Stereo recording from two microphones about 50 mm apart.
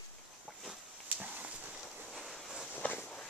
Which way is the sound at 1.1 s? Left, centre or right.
Right.